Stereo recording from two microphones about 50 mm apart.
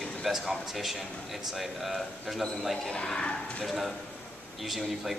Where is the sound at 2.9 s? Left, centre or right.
Centre.